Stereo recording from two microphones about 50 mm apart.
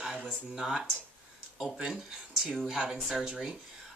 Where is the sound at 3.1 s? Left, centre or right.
Centre.